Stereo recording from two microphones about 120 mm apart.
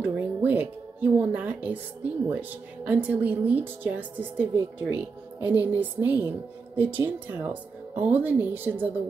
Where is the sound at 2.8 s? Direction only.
15° right (ahead or behind).